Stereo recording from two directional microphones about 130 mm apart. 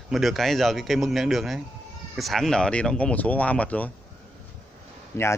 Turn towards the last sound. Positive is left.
turn(degrees=20)  # may be behind; listen again after turning